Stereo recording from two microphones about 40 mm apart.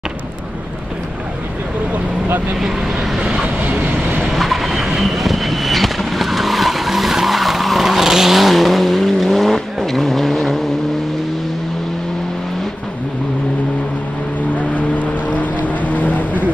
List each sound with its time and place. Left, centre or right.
2.6 s vehicle: centre
4.3 s vehicle: centre
14.7 s vehicle: left